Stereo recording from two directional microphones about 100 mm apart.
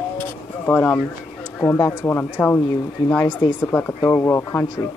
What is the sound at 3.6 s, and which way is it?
Speech, 15° left (ahead or behind).